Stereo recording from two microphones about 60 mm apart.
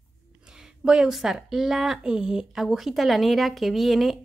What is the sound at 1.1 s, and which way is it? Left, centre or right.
Speech, centre.